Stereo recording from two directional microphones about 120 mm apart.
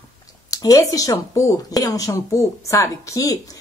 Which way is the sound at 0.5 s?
30° left (ahead or behind).